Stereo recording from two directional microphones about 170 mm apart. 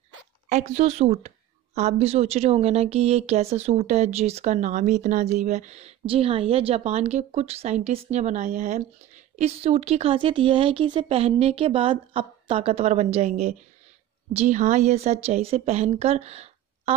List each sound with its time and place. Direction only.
0.5 s a woman's voice: 40° right (ahead or behind)